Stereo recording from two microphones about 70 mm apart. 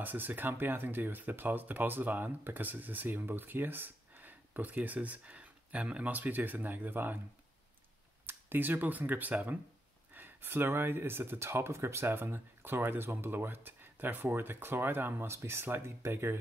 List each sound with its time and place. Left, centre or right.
0.0 s speech: right
8.3 s speech: right